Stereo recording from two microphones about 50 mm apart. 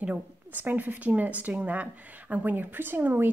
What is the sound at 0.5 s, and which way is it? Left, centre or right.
Speech, right.